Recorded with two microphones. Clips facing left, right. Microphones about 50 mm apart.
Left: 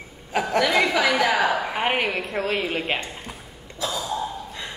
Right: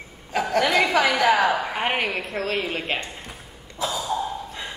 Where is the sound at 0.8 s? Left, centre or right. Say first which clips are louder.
Right 1 dB; centre.